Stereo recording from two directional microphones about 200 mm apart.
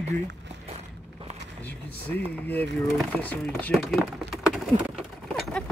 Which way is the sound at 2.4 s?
5° left (ahead or behind).